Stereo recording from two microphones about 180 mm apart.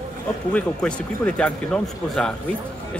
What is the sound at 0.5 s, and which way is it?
Speech, 5° left (ahead or behind).